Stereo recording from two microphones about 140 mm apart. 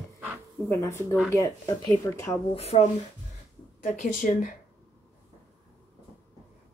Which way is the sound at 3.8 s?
65° left (ahead or behind).